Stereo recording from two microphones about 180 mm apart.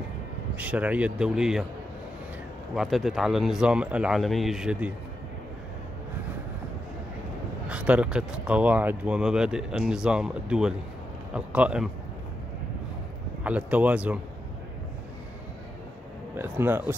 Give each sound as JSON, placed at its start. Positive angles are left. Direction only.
{"t": 0.6, "sound": "speech", "side_deg": -10}
{"t": 2.7, "sound": "speech", "side_deg": 0}
{"t": 7.6, "sound": "speech", "side_deg": -5}
{"t": 13.4, "sound": "a man's voice", "side_deg": -10}
{"t": 16.3, "sound": "speech", "side_deg": -10}